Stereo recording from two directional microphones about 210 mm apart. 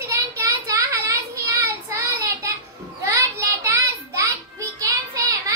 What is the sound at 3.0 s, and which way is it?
Child singing, 15° right (ahead or behind).